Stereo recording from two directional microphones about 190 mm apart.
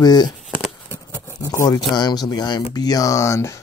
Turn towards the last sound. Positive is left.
turn(degrees=15)  # may be behind; listen again after turning